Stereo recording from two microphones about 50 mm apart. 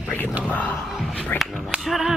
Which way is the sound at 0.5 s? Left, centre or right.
Left.